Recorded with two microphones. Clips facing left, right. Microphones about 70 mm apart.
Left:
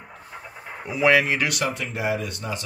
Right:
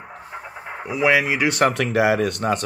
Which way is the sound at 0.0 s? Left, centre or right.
Right.